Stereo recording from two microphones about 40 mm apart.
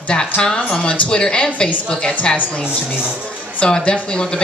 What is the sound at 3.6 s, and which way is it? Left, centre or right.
Speech, centre.